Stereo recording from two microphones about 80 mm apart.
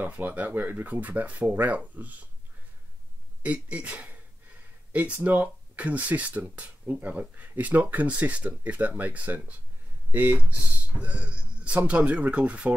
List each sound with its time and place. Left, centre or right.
0.0 s speech: right
3.4 s speech: centre